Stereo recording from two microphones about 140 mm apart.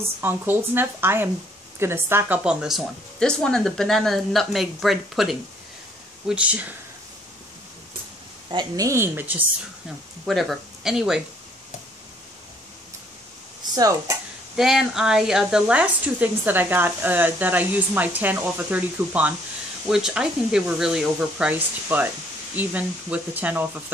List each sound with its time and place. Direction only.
0.2 s speech: 15° right (ahead or behind)
8.5 s a woman's voice: 30° right (ahead or behind)
10.2 s speech: centre (ahead or behind)
13.7 s a woman's voice: 25° right (ahead or behind)
14.6 s speech: 5° right (ahead or behind)